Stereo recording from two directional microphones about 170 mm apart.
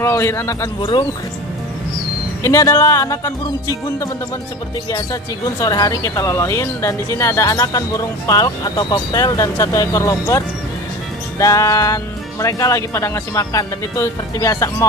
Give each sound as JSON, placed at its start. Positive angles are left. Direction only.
{"t": 0.0, "sound": "speech", "side_deg": 15}
{"t": 2.4, "sound": "speech", "side_deg": 20}
{"t": 5.6, "sound": "speech", "side_deg": 20}